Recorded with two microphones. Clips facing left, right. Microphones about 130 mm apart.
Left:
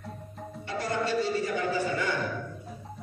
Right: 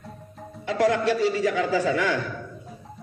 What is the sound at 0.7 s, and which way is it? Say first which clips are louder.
A man's voice: right 8 dB; 90° right.